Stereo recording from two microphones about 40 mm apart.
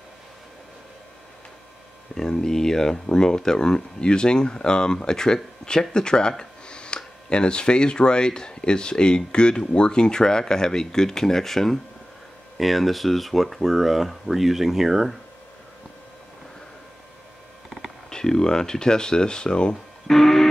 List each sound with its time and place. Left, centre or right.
2.1 s speech: centre
18.1 s speech: centre
20.1 s speech: centre